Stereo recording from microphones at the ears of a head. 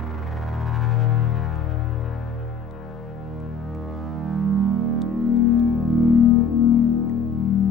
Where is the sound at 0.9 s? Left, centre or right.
Left.